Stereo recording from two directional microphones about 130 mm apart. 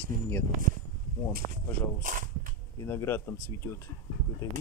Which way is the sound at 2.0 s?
90° right.